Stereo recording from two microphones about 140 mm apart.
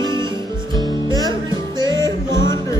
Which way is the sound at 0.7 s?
30° right (ahead or behind).